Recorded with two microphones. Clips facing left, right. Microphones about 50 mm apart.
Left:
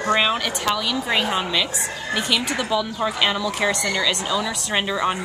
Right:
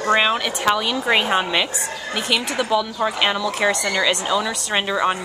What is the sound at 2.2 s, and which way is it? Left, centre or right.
A woman's voice, centre.